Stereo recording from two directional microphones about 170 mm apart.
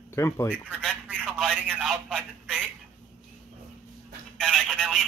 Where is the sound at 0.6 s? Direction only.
10° right (ahead or behind).